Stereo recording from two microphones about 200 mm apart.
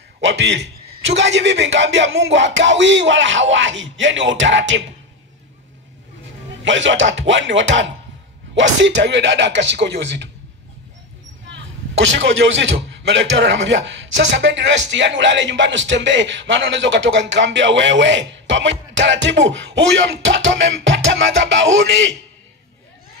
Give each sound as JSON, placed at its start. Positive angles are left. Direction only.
{"t": 0.2, "sound": "a man's voice", "side_deg": -60}
{"t": 6.6, "sound": "a man's voice", "side_deg": -65}
{"t": 11.4, "sound": "a man's voice", "side_deg": -65}